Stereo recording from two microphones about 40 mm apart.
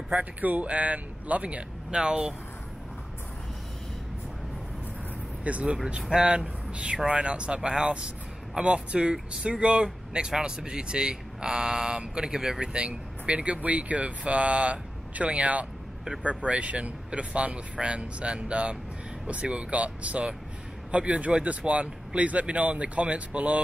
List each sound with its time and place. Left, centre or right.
0.1 s speech: right
2.0 s speech: right
5.4 s speech: right
6.0 s speech: right